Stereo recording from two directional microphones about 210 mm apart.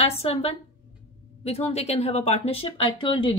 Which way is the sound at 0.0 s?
30° left (ahead or behind).